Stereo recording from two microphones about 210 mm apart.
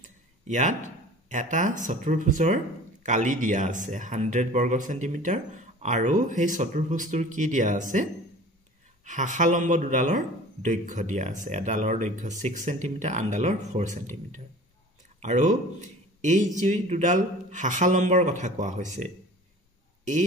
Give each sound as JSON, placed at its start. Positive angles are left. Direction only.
{"t": 0.0, "sound": "speech", "side_deg": -35}